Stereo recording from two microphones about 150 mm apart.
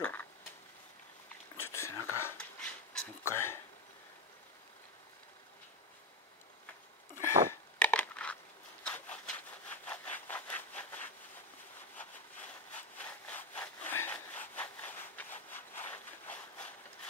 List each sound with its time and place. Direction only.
0.0 s a sound: 15° left (ahead or behind)
1.7 s whispering: 20° left (ahead or behind)
2.3 s dog: 5° left (ahead or behind)
3.3 s a sound: 15° left (ahead or behind)
7.8 s crushing: 10° left (ahead or behind)
8.8 s sawing: 10° left (ahead or behind)